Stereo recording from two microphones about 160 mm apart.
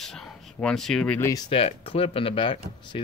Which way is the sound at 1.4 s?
35° left (ahead or behind).